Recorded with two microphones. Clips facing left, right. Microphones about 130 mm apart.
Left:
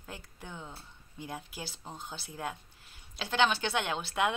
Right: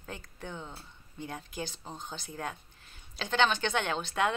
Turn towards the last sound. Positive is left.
turn(degrees=10)  # may be behind; listen again after turning